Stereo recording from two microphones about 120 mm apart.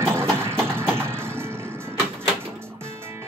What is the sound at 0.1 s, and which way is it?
Vehicle, 20° right (ahead or behind).